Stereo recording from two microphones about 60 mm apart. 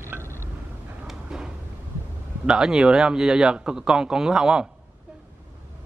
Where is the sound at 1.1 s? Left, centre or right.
Centre.